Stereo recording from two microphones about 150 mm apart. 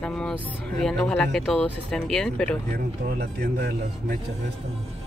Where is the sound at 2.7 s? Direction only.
80° right.